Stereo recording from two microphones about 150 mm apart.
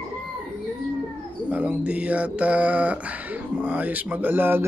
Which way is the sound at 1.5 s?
10° right (ahead or behind).